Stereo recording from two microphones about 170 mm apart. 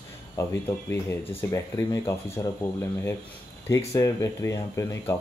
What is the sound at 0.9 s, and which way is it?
Speech, 15° left (ahead or behind).